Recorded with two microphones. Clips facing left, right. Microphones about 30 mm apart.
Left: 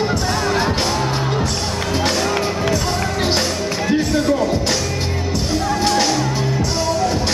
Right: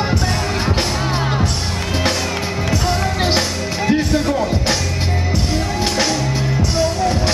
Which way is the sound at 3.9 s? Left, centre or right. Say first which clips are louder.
Even; centre.